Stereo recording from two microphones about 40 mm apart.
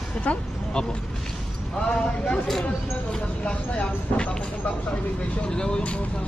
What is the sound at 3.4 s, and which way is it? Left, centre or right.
Speech, left.